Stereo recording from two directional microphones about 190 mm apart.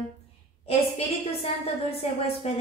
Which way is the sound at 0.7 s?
30° left (ahead or behind).